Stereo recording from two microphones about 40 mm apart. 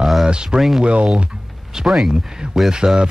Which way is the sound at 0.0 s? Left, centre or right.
Centre.